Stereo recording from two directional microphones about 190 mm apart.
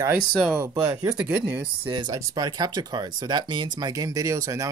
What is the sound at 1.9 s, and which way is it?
Speech, 20° right (ahead or behind).